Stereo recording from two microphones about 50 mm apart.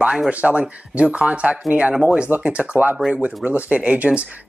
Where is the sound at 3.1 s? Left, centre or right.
Right.